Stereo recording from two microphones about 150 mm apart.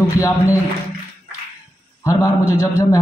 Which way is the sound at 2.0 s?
20° left (ahead or behind).